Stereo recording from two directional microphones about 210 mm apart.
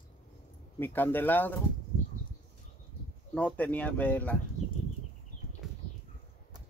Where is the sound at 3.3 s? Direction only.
5° left (ahead or behind).